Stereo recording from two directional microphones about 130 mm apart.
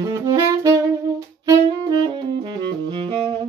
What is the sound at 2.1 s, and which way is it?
Saxophone, 35° right (ahead or behind).